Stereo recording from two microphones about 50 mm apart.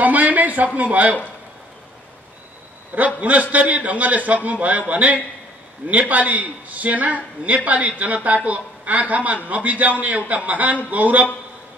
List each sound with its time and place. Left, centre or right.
0.0 s a sound: right
0.7 s a man's voice: right
3.2 s a man's voice: right